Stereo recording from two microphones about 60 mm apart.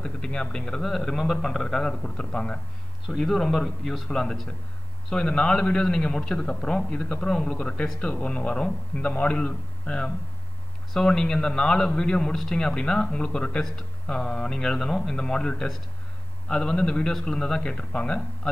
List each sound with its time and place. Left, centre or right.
0.0 s a man's voice: centre